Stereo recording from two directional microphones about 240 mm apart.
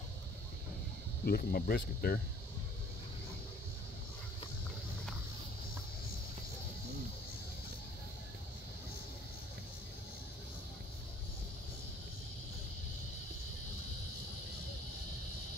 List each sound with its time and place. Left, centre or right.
1.2 s speech: left